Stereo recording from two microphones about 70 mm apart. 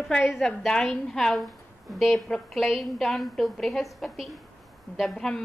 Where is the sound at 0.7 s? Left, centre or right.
Centre.